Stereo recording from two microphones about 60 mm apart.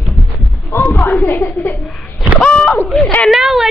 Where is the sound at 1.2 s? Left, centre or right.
Left.